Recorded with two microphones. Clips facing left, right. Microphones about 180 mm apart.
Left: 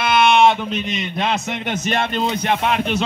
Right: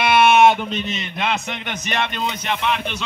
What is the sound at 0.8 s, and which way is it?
Speech, 20° left (ahead or behind).